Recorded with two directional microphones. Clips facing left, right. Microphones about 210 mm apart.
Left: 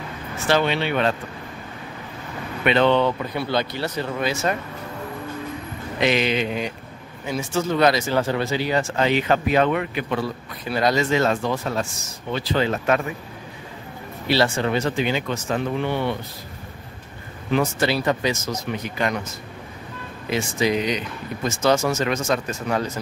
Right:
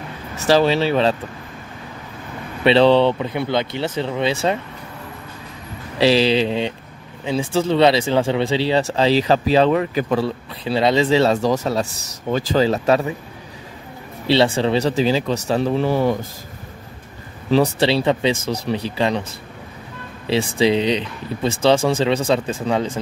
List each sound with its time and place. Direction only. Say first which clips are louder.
0.5 s speech: right 5 dB; 35° right (ahead or behind)
2.6 s speech: right 5 dB; 30° right (ahead or behind)
3.2 s speech: right 3 dB; 20° right (ahead or behind)
5.9 s speech: right 6 dB; 30° right (ahead or behind)
14.2 s speech: right 4 dB; 30° right (ahead or behind)
17.5 s speech: right 5 dB; 35° right (ahead or behind)
20.2 s speech: right 5 dB; 30° right (ahead or behind)